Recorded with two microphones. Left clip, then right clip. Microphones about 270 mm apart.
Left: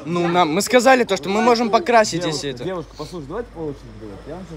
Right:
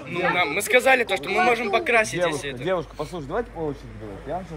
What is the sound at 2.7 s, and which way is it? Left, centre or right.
Speech, right.